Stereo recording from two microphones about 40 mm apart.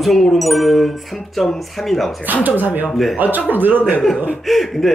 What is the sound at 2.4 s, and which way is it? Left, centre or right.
Speech, right.